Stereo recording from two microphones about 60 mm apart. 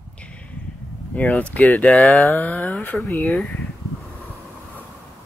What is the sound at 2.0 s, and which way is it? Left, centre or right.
Speech, left.